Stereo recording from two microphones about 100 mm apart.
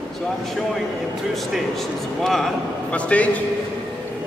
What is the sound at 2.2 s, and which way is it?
Speech, centre (ahead or behind).